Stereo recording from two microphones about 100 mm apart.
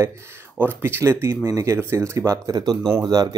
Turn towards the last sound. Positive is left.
turn(degrees=-40)  # may be behind; listen again after turning